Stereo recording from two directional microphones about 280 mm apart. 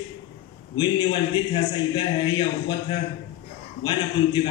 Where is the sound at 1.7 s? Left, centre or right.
Centre.